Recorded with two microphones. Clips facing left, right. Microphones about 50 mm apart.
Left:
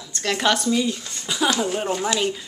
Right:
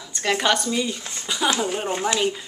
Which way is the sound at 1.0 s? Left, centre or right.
Right.